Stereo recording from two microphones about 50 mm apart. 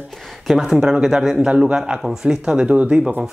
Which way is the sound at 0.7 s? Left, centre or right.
Centre.